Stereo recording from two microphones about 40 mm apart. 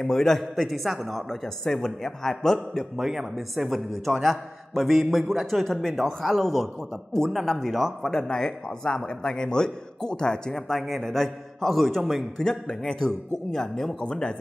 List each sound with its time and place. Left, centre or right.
0.0 s a man's voice: centre
1.3 s a man's voice: centre
3.0 s a man's voice: centre
10.7 s a man's voice: centre
12.4 s a man's voice: centre
14.0 s speech: left